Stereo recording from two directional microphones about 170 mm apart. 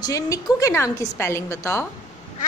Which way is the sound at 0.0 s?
20° left (ahead or behind).